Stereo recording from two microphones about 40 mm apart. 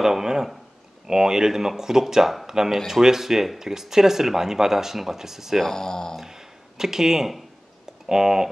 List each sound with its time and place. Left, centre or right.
0.0 s speech: centre
5.6 s speech: centre
6.1 s a sound: centre
8.1 s speech: centre